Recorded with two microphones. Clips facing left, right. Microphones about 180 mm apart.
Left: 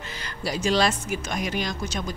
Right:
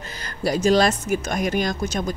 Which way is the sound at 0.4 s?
45° right (ahead or behind).